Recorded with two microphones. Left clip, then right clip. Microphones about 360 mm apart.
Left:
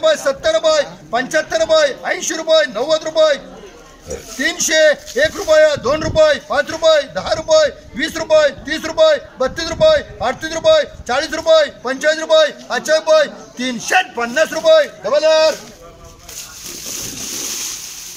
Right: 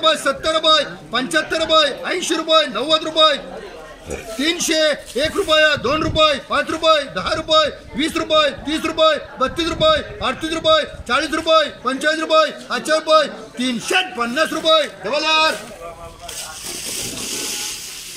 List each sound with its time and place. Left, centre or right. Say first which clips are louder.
0.0 s a man's voice: left 2 dB; centre
4.4 s a man's voice: left 4 dB; centre